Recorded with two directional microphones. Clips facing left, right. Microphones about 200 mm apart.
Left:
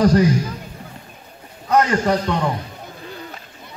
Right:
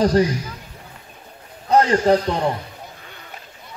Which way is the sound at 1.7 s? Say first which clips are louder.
Right 2 dB; 30° right (ahead or behind).